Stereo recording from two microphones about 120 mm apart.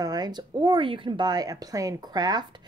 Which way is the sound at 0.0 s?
35° right (ahead or behind).